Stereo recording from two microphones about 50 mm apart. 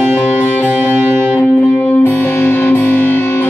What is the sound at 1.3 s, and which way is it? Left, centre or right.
Music, left.